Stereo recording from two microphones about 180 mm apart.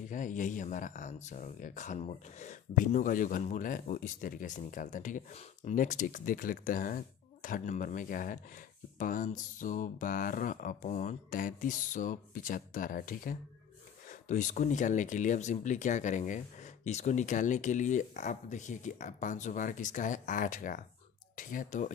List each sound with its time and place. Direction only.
0.1 s speech: 45° left (ahead or behind)